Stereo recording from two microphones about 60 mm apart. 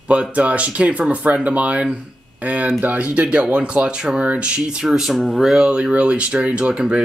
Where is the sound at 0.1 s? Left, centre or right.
Right.